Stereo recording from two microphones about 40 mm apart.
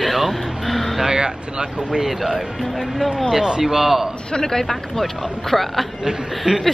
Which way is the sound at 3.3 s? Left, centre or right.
Centre.